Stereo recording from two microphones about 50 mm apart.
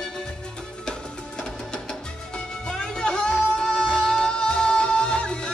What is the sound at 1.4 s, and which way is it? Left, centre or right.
Music, centre.